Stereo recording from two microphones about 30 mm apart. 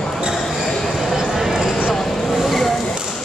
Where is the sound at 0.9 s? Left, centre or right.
Centre.